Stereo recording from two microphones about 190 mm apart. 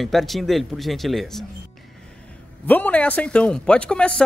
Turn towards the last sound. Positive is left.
turn(degrees=5)  # may be behind; listen again after turning